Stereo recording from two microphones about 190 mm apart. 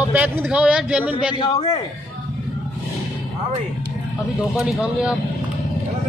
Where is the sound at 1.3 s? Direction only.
25° left (ahead or behind).